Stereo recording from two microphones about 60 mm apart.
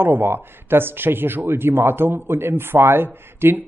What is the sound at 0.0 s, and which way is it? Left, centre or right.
Speech, right.